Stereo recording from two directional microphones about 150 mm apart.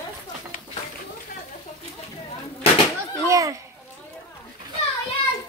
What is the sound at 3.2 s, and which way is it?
Speech, 20° right (ahead or behind).